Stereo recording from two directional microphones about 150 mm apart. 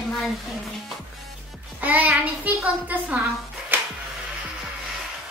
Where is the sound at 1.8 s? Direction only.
10° right (ahead or behind).